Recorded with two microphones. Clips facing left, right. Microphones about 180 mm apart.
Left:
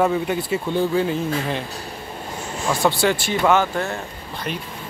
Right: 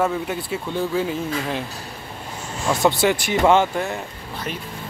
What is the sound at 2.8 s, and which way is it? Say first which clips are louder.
Speech: right 1 dB; 20° right (ahead or behind).